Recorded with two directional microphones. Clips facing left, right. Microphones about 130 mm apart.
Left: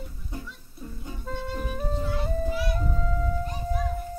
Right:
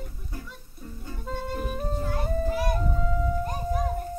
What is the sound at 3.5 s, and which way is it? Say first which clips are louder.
Children playing: right 2 dB; 45° right (ahead or behind).